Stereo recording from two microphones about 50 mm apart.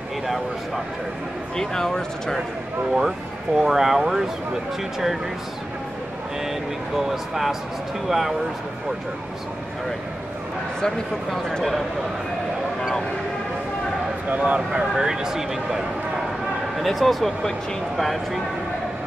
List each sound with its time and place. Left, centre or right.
1.6 s speech: centre
2.9 s speech: centre
7.0 s speech: centre
10.8 s speech: centre
14.5 s speech: right
15.0 s speech: centre
16.8 s speech: centre